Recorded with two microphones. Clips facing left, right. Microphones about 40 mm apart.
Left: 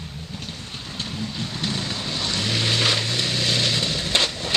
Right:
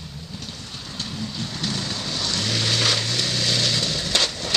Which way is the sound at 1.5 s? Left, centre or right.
Centre.